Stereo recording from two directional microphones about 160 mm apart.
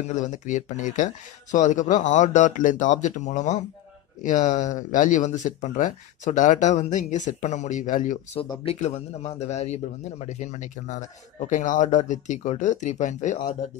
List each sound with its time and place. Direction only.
0.1 s a man's voice: 50° left (ahead or behind)
8.4 s a man's voice: 35° left (ahead or behind)